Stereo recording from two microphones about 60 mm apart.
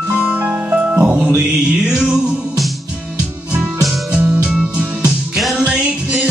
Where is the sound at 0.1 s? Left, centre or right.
Right.